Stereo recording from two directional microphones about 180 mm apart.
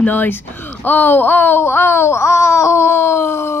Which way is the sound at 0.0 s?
10° left (ahead or behind).